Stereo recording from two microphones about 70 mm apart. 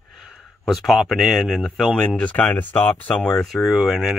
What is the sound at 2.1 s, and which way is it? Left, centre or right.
Speech, centre.